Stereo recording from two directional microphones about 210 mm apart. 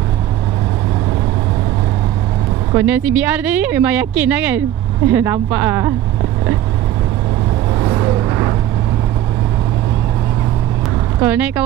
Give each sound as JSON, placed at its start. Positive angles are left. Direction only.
{"t": 2.7, "sound": "speech", "side_deg": -5}
{"t": 7.9, "sound": "vehicle", "side_deg": -20}
{"t": 11.1, "sound": "speech", "side_deg": -10}